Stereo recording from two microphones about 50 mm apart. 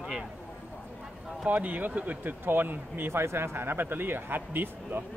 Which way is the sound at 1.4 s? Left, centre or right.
Right.